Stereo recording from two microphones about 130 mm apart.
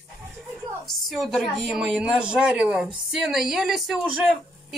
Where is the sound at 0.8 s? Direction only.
Centre (ahead or behind).